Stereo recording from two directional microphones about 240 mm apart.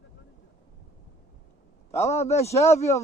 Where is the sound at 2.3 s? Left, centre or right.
Left.